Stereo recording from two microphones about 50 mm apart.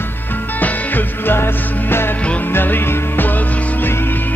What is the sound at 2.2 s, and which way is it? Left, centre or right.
Music, left.